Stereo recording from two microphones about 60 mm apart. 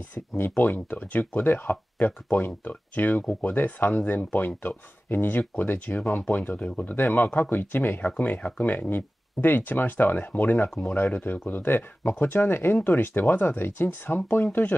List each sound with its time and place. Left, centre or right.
0.1 s speech: left
7.0 s speech: left
8.0 s speech: left
14.5 s speech: left